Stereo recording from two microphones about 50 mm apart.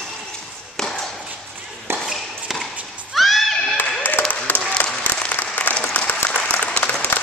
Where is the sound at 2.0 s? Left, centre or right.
Centre.